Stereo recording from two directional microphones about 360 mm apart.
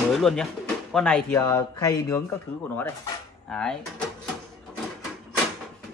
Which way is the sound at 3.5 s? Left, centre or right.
Centre.